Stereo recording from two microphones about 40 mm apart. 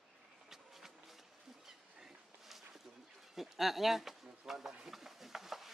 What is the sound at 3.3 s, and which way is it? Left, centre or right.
Speech, centre.